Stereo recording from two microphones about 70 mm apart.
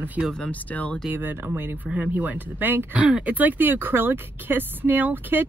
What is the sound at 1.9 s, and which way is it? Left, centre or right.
Speech, centre.